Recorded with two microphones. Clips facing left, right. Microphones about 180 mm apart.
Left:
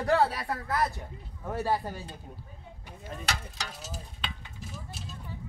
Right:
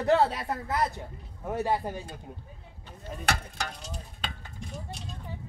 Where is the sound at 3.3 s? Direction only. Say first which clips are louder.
Right 6 dB; 55° right (ahead or behind).